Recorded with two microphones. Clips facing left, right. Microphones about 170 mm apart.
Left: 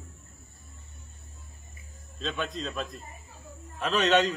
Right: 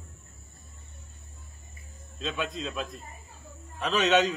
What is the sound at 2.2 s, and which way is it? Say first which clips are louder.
A man's voice: even; centre (ahead or behind).